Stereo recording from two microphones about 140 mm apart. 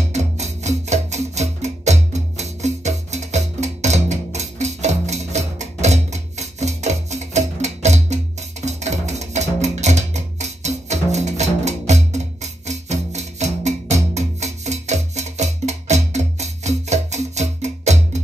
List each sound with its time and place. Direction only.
0.1 s music: 55° right (ahead or behind)